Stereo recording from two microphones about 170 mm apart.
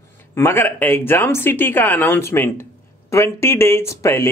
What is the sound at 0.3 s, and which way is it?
A man's voice, 15° left (ahead or behind).